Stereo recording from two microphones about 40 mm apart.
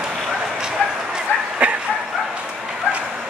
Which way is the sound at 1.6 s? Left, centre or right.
Right.